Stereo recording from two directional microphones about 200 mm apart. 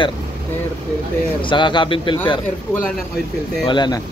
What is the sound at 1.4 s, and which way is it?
Speech, 25° left (ahead or behind).